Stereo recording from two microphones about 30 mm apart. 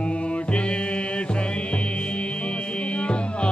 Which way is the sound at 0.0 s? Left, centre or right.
Left.